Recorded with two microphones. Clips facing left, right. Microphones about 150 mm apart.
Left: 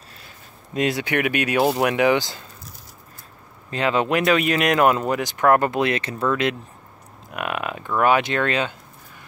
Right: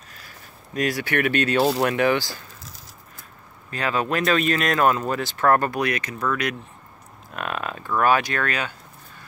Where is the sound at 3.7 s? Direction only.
20° left (ahead or behind).